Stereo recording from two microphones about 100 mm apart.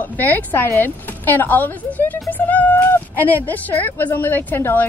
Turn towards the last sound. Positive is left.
turn(degrees=20)  # may be behind; listen again after turning